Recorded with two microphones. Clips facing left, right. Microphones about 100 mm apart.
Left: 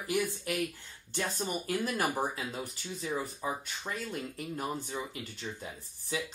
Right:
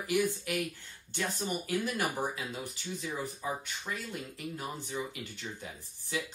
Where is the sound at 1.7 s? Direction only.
40° left (ahead or behind).